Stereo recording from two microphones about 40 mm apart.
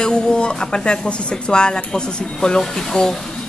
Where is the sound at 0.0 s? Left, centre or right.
Left.